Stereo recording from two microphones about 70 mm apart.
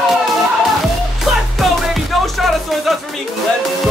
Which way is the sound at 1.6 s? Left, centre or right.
Centre.